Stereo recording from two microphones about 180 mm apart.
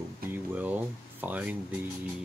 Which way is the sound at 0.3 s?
10° right (ahead or behind).